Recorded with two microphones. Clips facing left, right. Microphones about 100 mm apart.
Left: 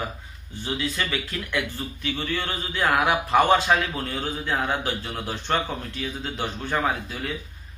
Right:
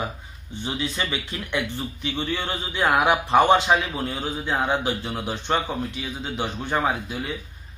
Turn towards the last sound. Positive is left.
turn(degrees=-20)  # may be behind; listen again after turning